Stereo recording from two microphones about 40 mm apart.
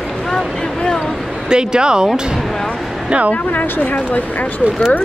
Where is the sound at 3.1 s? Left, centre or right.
Right.